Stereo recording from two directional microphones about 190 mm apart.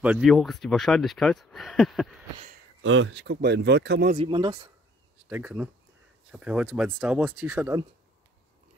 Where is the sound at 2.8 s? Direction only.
90° right; by 4.2 s 60° right (ahead or behind).